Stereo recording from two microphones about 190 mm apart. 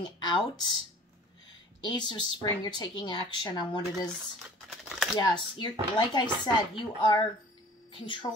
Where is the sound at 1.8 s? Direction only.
25° left (ahead or behind).